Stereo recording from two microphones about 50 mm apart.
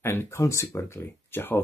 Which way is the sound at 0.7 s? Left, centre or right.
Left.